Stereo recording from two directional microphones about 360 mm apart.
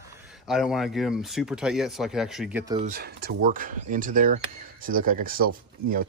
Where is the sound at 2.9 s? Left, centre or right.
Right.